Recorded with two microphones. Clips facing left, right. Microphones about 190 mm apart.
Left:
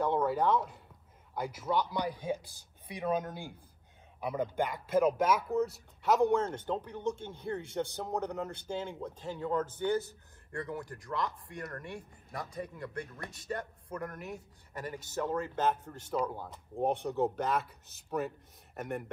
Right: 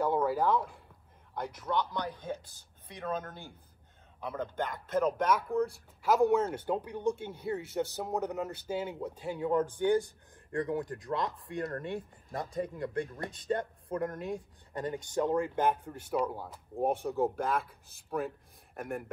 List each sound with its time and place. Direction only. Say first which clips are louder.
0.0 s speech: right 1 dB; 5° right (ahead or behind)